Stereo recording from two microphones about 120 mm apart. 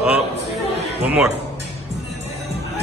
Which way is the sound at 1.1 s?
10° right (ahead or behind).